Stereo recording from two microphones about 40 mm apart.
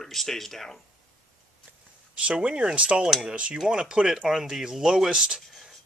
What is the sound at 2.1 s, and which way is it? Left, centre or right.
Speech, right.